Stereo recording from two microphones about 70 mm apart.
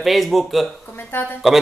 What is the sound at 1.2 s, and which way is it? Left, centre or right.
Speech, left.